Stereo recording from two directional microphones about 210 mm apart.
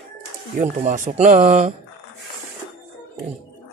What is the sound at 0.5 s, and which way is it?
Speech, 40° right (ahead or behind).